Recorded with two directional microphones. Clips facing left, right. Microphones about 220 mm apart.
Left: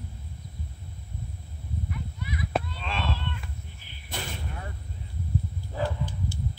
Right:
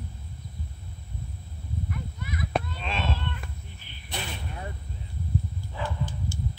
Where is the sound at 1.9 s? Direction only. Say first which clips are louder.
Left 1 dB; 50° right (ahead or behind).